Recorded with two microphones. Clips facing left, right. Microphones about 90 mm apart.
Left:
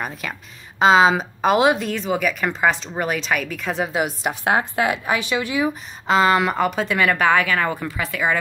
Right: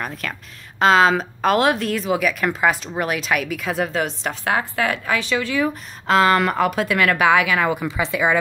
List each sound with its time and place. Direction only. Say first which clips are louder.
0.0 s speech: even; 5° left (ahead or behind)
3.9 s a woman's voice: left 1 dB; 10° left (ahead or behind)
4.5 s speech: left 1 dB; 20° left (ahead or behind)
6.0 s a woman's voice: right 1 dB; centre (ahead or behind); by 8.4 s 15° right (ahead or behind)